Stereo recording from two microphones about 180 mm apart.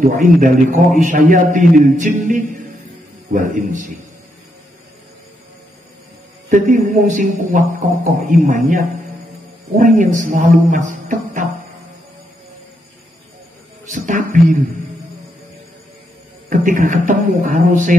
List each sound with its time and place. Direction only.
0.0 s a man's voice: 45° right (ahead or behind)
6.5 s a man's voice: 45° right (ahead or behind)
13.8 s music: 45° right (ahead or behind)
16.4 s a man's voice: 45° right (ahead or behind)